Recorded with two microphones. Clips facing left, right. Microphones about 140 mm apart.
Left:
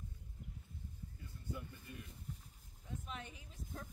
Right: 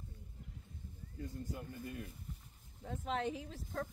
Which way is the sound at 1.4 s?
80° right.